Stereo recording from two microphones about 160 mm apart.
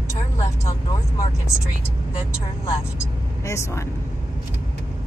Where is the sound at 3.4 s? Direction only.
20° left (ahead or behind).